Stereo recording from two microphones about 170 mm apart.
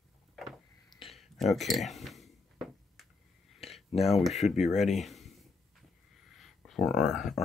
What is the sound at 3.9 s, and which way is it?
Speech, 35° left (ahead or behind).